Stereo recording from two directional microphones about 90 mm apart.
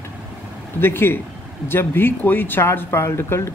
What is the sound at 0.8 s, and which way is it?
Speech, 25° left (ahead or behind).